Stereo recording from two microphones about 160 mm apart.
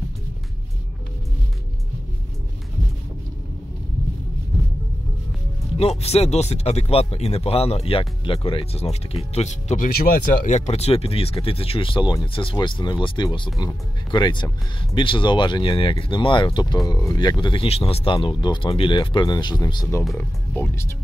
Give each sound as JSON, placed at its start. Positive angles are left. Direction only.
{"t": 5.8, "sound": "speech", "side_deg": 40}